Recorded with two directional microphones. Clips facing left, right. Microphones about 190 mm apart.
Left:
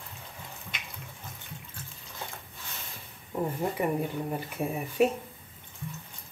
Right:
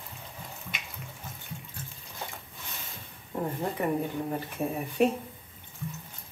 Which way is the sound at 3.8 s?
10° left (ahead or behind).